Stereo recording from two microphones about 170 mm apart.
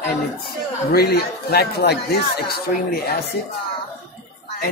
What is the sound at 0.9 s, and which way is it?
A man's voice, 70° left (ahead or behind).